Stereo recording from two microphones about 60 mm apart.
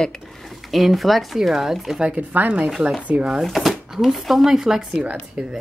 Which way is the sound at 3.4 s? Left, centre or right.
Centre.